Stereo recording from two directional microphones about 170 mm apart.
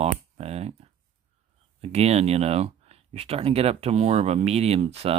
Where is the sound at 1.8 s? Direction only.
40° right (ahead or behind).